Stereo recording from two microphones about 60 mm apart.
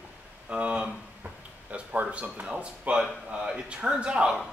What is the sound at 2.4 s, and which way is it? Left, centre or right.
Speech, centre.